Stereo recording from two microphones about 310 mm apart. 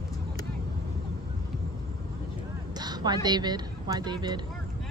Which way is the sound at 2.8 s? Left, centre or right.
Centre.